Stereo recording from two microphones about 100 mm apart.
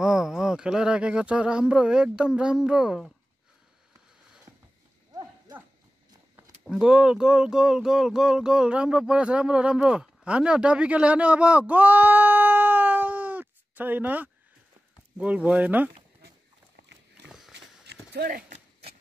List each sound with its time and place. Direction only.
0.0 s speech: 5° right (ahead or behind)
5.1 s horse: 35° right (ahead or behind)
6.6 s speech: 5° right (ahead or behind)